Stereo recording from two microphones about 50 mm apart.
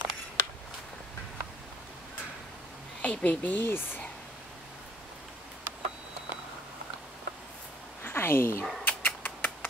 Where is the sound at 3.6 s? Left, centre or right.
Left.